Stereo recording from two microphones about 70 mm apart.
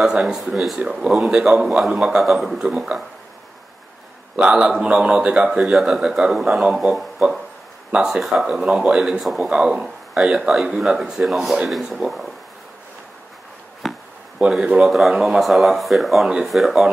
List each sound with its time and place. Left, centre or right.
0.0 s a man's voice: centre
4.4 s a man's voice: centre
13.8 s chop: centre
14.5 s speech: centre